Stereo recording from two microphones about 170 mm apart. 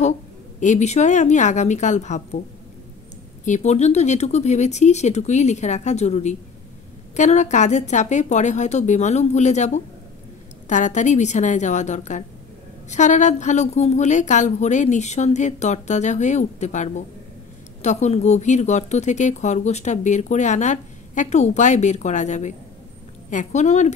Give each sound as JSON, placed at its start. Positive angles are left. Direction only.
{"t": 0.6, "sound": "speech", "side_deg": 45}
{"t": 3.4, "sound": "speech", "side_deg": 45}
{"t": 10.7, "sound": "speech", "side_deg": 45}